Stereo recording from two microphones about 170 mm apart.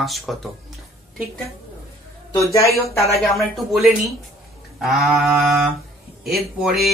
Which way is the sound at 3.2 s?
Centre (ahead or behind).